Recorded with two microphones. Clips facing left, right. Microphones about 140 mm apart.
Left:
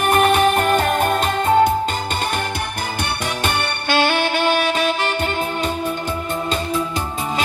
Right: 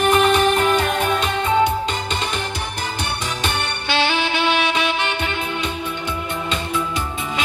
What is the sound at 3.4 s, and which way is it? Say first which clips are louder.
Saxophone: left 3 dB; 50° left (ahead or behind).